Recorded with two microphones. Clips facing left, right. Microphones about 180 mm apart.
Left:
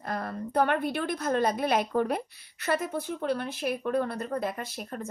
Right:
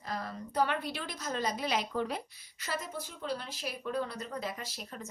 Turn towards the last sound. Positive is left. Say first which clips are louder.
# left 7 dB
turn(degrees=55)  # may be behind; listen again after turning